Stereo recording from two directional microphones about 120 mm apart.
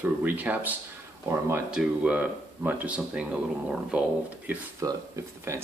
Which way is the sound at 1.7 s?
10° right (ahead or behind).